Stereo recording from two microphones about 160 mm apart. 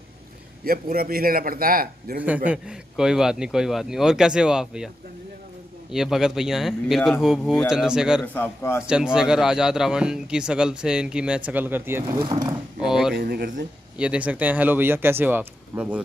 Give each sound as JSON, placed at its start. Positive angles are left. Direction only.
{"t": 0.7, "sound": "a man's voice", "side_deg": -65}
{"t": 2.1, "sound": "speech", "side_deg": -10}
{"t": 8.4, "sound": "a man's voice", "side_deg": 15}
{"t": 8.8, "sound": "speech", "side_deg": -5}
{"t": 12.8, "sound": "a sound", "side_deg": -5}
{"t": 13.1, "sound": "speech", "side_deg": -75}
{"t": 13.9, "sound": "speech", "side_deg": -5}